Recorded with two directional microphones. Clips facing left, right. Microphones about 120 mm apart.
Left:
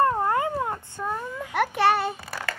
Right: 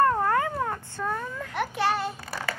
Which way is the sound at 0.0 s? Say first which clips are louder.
Even; 20° left (ahead or behind).